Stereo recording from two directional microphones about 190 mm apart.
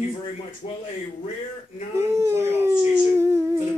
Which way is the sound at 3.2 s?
15° right (ahead or behind).